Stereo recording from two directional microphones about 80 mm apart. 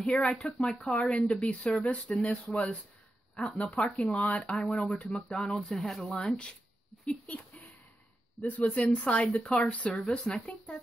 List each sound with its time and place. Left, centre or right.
0.0 s speech: centre
7.2 s a sound: centre
8.4 s speech: centre